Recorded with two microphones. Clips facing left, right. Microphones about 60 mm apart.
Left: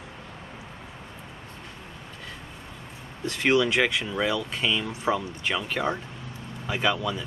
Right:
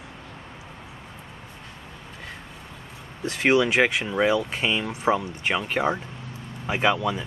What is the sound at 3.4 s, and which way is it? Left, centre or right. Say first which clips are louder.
Speech: right 2 dB; centre.